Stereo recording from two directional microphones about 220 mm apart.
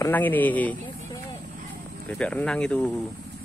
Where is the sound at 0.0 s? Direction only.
10° left (ahead or behind).